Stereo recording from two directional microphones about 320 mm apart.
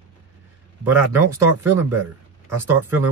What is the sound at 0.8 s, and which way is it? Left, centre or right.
Speech, centre.